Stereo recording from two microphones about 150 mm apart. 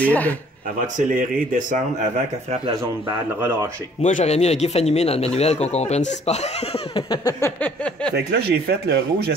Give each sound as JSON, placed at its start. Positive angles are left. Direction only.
{"t": 0.0, "sound": "a sound", "side_deg": 10}
{"t": 0.9, "sound": "speech", "side_deg": -65}
{"t": 3.3, "sound": "speech", "side_deg": -15}
{"t": 4.0, "sound": "speech", "side_deg": 50}
{"t": 7.0, "sound": "a sound", "side_deg": 25}
{"t": 8.1, "sound": "speech", "side_deg": -90}